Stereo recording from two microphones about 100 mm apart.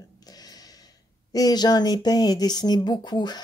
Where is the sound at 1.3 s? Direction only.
40° left (ahead or behind).